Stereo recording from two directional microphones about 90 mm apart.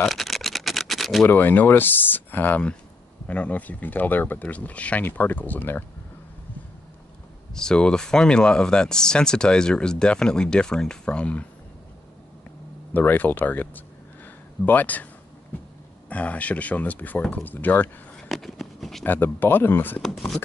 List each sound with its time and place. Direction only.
0.0 s a sound: centre (ahead or behind)
1.2 s speech: 20° left (ahead or behind)
7.5 s speech: 10° left (ahead or behind)
12.9 s speech: 20° left (ahead or behind)
16.1 s speech: 15° left (ahead or behind)
18.1 s a sound: centre (ahead or behind)
19.0 s speech: 20° left (ahead or behind)
20.0 s speech: 5° left (ahead or behind)